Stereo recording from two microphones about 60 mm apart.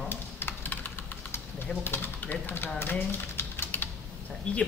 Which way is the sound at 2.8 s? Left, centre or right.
Left.